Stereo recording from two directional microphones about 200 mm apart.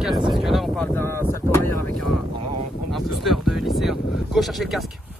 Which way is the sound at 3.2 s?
Centre (ahead or behind).